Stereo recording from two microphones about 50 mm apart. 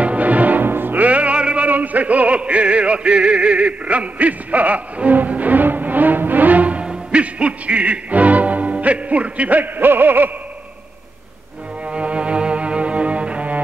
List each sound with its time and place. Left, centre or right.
0.0 s music: right
1.7 s music: right
11.8 s cello: right